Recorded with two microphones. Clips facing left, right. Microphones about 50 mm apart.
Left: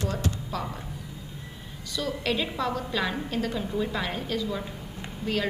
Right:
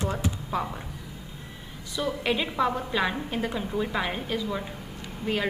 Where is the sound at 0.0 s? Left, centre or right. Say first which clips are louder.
Right 1 dB; right.